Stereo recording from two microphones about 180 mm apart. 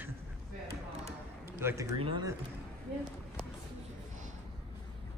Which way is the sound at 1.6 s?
15° right (ahead or behind).